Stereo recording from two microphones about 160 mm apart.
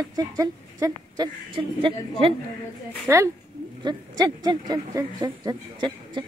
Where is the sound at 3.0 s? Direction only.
15° right (ahead or behind).